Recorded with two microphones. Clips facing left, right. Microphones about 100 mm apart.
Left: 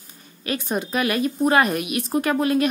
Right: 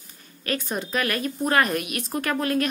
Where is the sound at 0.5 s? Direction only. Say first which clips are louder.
Left 3 dB; 15° left (ahead or behind).